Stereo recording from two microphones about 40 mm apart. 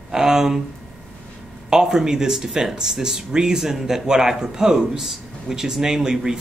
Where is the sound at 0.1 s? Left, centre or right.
Centre.